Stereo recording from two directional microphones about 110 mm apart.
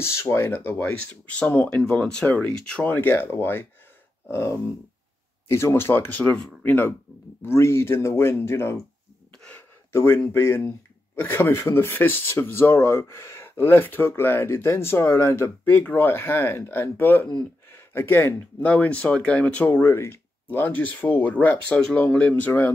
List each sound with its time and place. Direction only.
0.0 s speech: 25° left (ahead or behind)
9.4 s a sound: 15° left (ahead or behind)
9.9 s speech: 20° left (ahead or behind)